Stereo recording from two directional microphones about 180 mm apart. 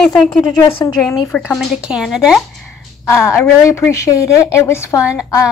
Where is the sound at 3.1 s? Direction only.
15° left (ahead or behind).